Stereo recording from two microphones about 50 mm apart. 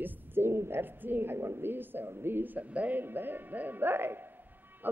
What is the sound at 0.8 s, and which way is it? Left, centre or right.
A woman's voice, right.